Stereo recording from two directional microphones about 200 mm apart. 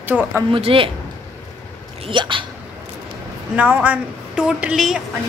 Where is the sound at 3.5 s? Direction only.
5° right (ahead or behind).